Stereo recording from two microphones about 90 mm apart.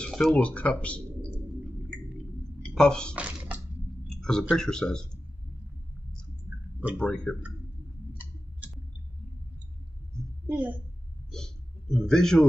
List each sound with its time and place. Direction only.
0.0 s a sound: 5° left (ahead or behind)
0.4 s speech: 15° left (ahead or behind)
2.8 s speech: 10° left (ahead or behind)
3.2 s a sound: 15° right (ahead or behind)
4.1 s speech: 5° left (ahead or behind)
7.0 s speech: 10° left (ahead or behind)
8.2 s a sound: 15° right (ahead or behind)
10.5 s a woman's voice: 25° right (ahead or behind)
11.3 s a man's voice: 5° left (ahead or behind)